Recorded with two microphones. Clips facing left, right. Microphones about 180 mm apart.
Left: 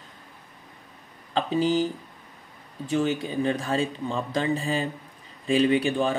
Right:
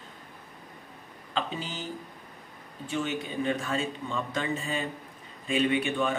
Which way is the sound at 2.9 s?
35° left (ahead or behind).